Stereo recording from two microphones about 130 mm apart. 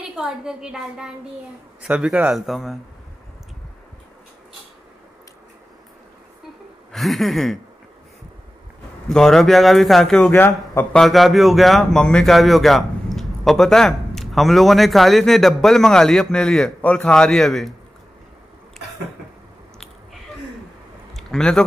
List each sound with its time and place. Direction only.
0.1 s speech: 5° right (ahead or behind)
6.9 s speech: centre (ahead or behind)
9.1 s speech: 5° left (ahead or behind)
10.3 s speech: 20° left (ahead or behind)
10.9 s speech: centre (ahead or behind)
21.1 s a sound: centre (ahead or behind)